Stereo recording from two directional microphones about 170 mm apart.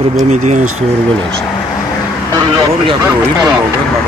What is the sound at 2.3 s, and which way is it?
Speech, 25° right (ahead or behind).